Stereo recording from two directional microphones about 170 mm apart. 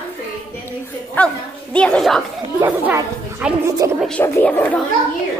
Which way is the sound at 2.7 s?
10° right (ahead or behind).